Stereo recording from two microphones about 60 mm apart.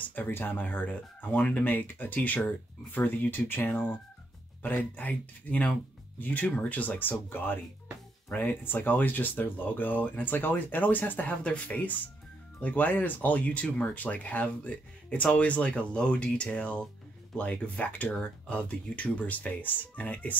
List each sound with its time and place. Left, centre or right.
0.1 s speech: left